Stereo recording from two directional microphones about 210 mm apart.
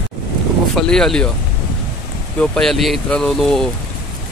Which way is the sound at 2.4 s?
5° left (ahead or behind).